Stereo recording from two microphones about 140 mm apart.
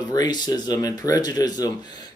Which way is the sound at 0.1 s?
30° left (ahead or behind).